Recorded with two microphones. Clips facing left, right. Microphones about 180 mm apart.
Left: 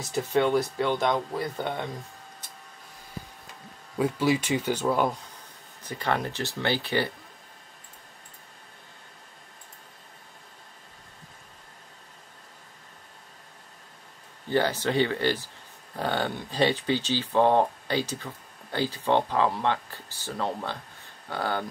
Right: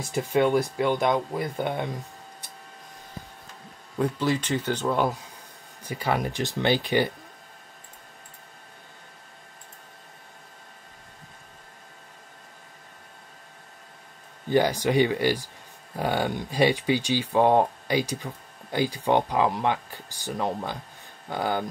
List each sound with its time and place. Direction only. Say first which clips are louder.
0.1 s speech: right 1 dB; 10° right (ahead or behind)
4.0 s speech: left 1 dB; 10° left (ahead or behind)
5.9 s speech: right 2 dB; 10° right (ahead or behind)
14.5 s speech: right 3 dB; 15° right (ahead or behind)